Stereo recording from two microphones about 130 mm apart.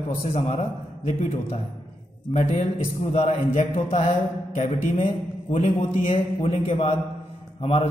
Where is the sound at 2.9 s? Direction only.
65° left (ahead or behind).